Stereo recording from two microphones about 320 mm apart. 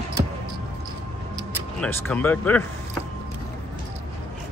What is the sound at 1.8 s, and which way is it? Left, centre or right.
Speech, centre.